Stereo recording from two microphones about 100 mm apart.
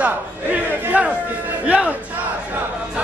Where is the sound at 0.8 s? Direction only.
15° right (ahead or behind).